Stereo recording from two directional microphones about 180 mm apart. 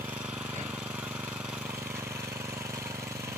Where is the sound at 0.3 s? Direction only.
5° right (ahead or behind).